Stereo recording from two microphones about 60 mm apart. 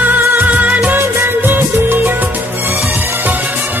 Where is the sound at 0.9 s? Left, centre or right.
Right.